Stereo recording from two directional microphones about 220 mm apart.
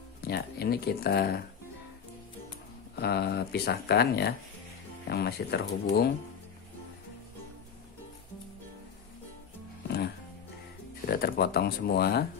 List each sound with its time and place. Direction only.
0.2 s speech: 45° left (ahead or behind)
3.0 s speech: 45° left (ahead or behind)
11.1 s speech: 45° left (ahead or behind)